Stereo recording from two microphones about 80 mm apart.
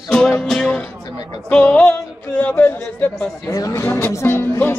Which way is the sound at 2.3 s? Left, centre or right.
Centre.